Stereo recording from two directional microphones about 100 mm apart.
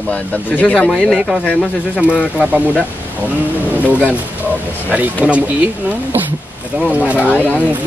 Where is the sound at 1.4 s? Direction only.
15° left (ahead or behind).